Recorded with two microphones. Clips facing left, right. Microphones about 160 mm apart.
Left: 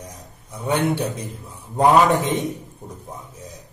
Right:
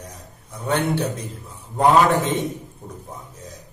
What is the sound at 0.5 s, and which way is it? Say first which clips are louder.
A man's voice: left 1 dB; 15° left (ahead or behind).